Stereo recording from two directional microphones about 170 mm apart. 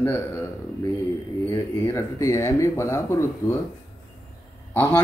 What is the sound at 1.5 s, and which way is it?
A man's voice, 15° left (ahead or behind).